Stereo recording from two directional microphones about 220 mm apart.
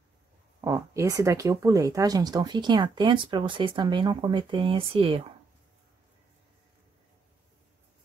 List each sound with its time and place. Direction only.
0.6 s speech: 15° right (ahead or behind)